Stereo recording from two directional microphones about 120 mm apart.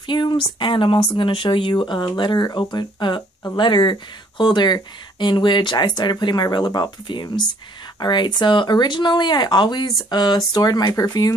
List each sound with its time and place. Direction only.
0.0 s speech: 40° left (ahead or behind)